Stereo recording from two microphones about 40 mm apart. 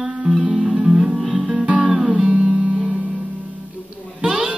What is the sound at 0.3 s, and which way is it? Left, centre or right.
Music, centre.